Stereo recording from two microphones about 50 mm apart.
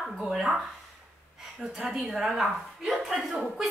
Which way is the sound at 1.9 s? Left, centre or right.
Centre.